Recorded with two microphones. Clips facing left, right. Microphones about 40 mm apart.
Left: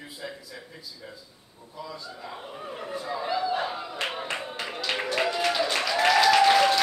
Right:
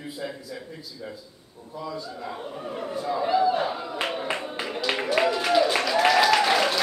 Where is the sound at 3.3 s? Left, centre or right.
Centre.